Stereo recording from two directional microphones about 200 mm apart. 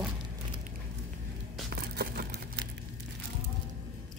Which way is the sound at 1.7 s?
55° right (ahead or behind).